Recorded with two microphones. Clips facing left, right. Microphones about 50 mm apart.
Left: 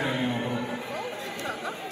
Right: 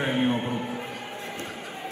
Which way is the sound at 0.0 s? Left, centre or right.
Right.